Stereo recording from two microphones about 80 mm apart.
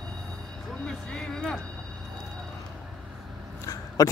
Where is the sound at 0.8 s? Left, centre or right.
Centre.